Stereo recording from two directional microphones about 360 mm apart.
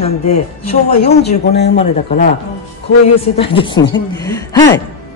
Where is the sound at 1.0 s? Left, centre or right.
Centre.